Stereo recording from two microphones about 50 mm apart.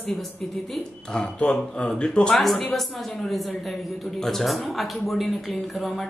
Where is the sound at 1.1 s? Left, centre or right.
Centre.